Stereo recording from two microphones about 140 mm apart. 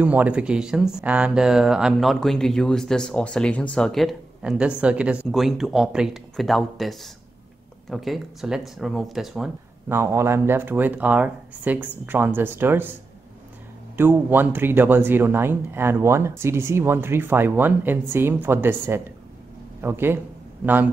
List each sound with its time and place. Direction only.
0.0 s speech: 10° right (ahead or behind)
9.8 s speech: 20° right (ahead or behind)
13.9 s speech: 15° right (ahead or behind)